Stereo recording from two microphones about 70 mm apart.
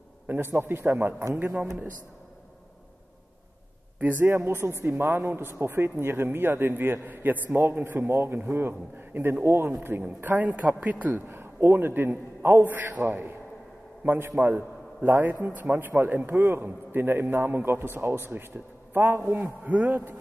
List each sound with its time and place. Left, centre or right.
0.3 s speech: right
4.0 s speech: right
10.0 s a man's voice: right